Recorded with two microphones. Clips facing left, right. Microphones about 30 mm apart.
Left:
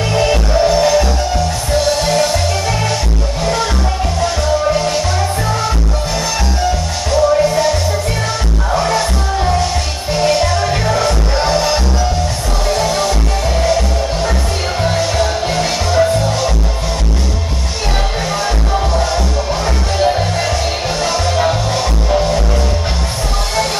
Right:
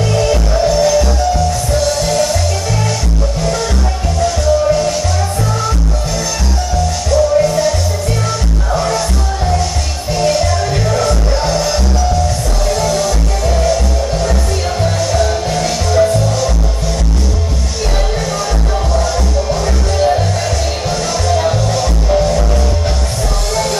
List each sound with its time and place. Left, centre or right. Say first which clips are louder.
0.1 s music: left 2 dB; left
7.1 s music: even; left
8.7 s music: left 1 dB; left
14.8 s music: even; left
19.6 s music: left 1 dB; left
21.3 s music: right 1 dB; centre